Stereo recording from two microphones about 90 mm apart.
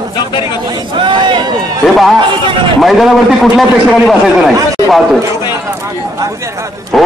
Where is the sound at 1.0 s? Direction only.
65° right (ahead or behind).